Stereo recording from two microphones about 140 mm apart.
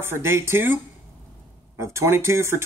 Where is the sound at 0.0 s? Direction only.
15° right (ahead or behind).